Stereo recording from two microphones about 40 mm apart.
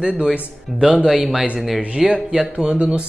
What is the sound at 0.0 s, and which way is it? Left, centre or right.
Speech, right.